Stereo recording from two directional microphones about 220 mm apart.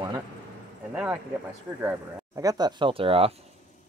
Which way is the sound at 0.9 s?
5° right (ahead or behind).